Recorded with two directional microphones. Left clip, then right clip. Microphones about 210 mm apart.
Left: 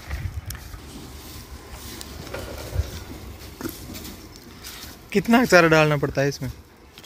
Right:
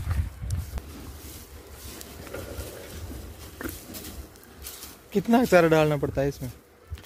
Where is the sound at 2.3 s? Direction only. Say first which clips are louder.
Left 4 dB; 30° left (ahead or behind).